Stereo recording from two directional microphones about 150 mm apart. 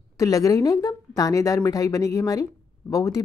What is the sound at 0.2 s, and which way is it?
Speech, 25° left (ahead or behind).